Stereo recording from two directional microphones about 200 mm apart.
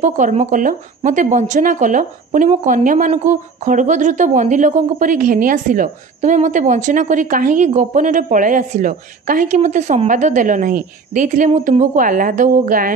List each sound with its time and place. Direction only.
0.0 s a woman's voice: 35° right (ahead or behind)